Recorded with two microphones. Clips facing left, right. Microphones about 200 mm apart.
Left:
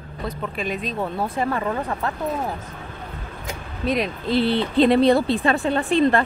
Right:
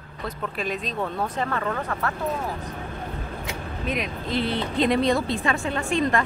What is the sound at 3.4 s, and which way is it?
Speech, 35° left (ahead or behind).